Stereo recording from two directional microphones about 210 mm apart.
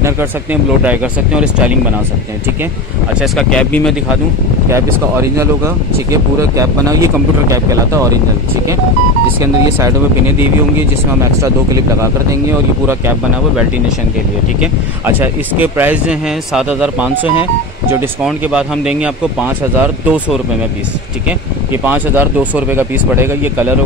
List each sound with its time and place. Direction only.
0.0 s speech: 10° right (ahead or behind)
3.2 s speech: 5° left (ahead or behind)
4.6 s speech: 15° right (ahead or behind)
9.4 s speech: 15° right (ahead or behind)
11.4 s speech: 15° right (ahead or behind)
14.6 s speech: 10° right (ahead or behind)
21.8 s speech: 10° right (ahead or behind)